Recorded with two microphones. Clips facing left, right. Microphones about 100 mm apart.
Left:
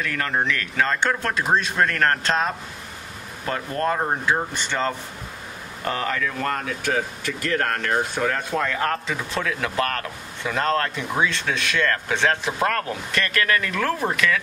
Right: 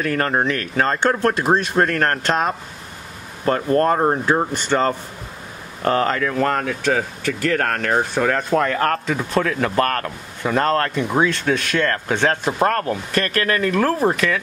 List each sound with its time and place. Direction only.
0.0 s speech: 45° right (ahead or behind)
6.1 s speech: 50° right (ahead or behind); by 14.4 s 35° right (ahead or behind)